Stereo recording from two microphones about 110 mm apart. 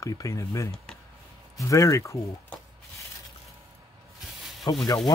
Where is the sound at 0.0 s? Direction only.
30° left (ahead or behind).